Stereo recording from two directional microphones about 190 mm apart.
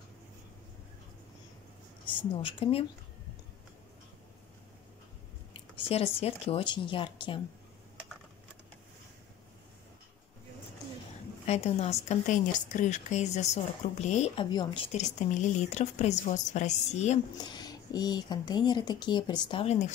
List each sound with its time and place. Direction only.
2.1 s speech: 30° left (ahead or behind)
5.5 s speech: 30° left (ahead or behind)
11.4 s a woman's voice: 35° left (ahead or behind)
14.9 s a woman's voice: 40° left (ahead or behind)
17.5 s speech: 20° left (ahead or behind)